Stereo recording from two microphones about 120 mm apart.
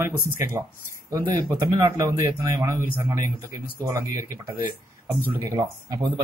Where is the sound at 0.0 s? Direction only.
20° right (ahead or behind).